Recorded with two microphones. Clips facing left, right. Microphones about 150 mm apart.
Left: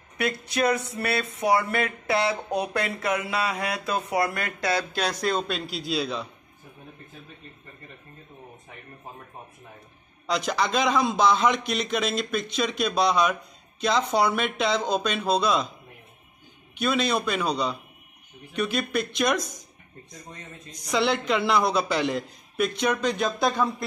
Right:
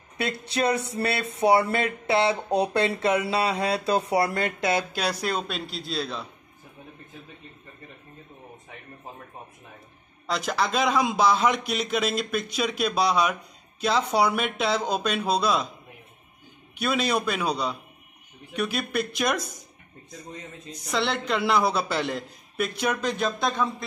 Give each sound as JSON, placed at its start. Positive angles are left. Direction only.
{"t": 0.2, "sound": "speech", "side_deg": -30}
{"t": 5.2, "sound": "a man's voice", "side_deg": -5}
{"t": 10.2, "sound": "a man's voice", "side_deg": -5}
{"t": 16.7, "sound": "a man's voice", "side_deg": -5}
{"t": 20.8, "sound": "a man's voice", "side_deg": 0}